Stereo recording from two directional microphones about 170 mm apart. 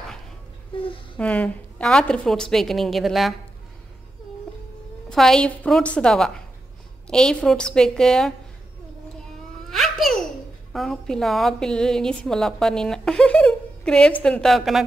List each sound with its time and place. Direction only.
0.7 s a sound: 30° left (ahead or behind)
1.1 s a woman's voice: 5° left (ahead or behind)
5.1 s a woman's voice: 5° left (ahead or behind)
9.2 s babbling: centre (ahead or behind)
10.7 s a woman's voice: centre (ahead or behind)